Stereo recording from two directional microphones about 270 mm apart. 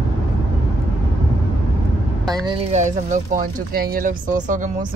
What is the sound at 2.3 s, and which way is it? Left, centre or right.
Speech, centre.